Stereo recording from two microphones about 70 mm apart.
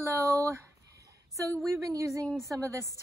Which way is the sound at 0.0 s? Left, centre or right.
Right.